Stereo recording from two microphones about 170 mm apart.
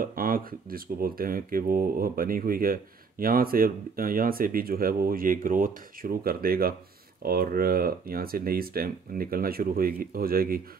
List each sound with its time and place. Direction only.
0.0 s speech: 55° right (ahead or behind)